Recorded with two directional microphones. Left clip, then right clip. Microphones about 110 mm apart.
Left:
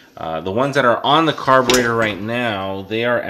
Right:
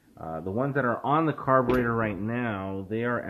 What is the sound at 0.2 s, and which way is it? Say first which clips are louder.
Speech: left 11 dB; 15° left (ahead or behind).